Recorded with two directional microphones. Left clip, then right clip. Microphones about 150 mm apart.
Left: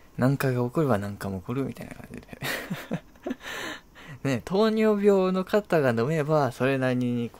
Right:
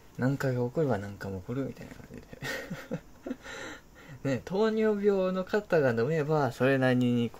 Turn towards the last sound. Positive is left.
turn(degrees=0)  # may be behind; listen again after turning